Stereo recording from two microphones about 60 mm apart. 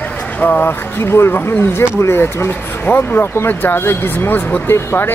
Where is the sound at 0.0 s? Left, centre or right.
Left.